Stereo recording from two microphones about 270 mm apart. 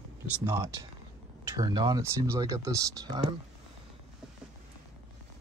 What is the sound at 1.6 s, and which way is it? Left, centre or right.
Speech, centre.